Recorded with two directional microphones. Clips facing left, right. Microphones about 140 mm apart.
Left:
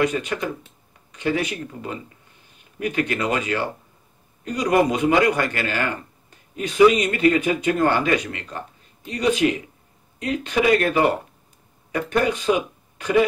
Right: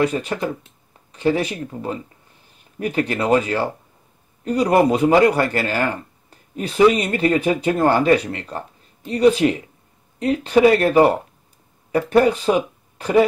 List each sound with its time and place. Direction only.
0.0 s speech: 35° right (ahead or behind)